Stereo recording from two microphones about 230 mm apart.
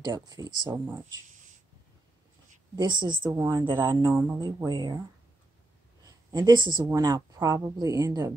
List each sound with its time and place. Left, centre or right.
0.0 s speech: centre
2.7 s a woman's voice: centre
6.0 s speech: centre